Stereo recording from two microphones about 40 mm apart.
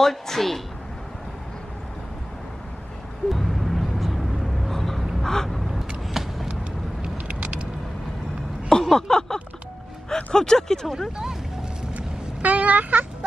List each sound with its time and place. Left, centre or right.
0.0 s a woman's voice: centre
3.3 s vehicle: centre
5.8 s vehicle: centre
7.0 s vehicle: right
8.6 s a sound: centre
10.1 s speech: centre
11.9 s a sound: right